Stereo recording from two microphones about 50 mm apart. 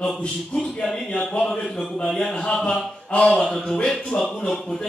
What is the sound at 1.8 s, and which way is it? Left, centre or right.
A man's voice, centre.